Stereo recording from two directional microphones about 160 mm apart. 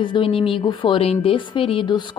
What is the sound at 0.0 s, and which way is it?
Speech, 30° left (ahead or behind).